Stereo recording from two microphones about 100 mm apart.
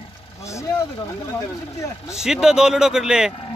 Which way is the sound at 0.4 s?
30° left (ahead or behind).